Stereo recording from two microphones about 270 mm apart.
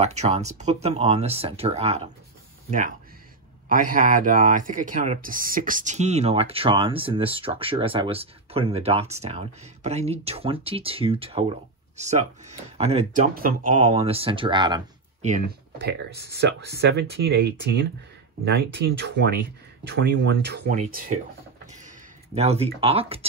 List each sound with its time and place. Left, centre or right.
0.0 s speech: right
3.6 s speech: right
15.2 s speech: right
22.3 s speech: right